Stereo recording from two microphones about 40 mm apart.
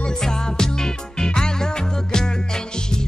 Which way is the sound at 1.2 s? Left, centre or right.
Centre.